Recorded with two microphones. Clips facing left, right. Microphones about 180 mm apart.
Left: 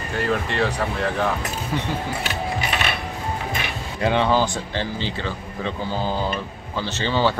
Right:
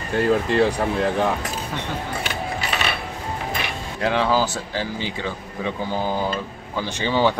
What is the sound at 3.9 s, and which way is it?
Speech, centre (ahead or behind).